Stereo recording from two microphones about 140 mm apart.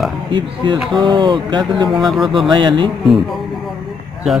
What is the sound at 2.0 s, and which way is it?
Speech, centre (ahead or behind).